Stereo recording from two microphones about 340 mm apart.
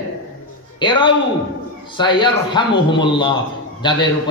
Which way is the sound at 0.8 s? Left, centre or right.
Centre.